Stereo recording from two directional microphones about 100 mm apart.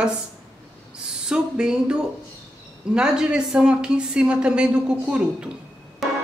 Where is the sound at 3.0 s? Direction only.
10° right (ahead or behind).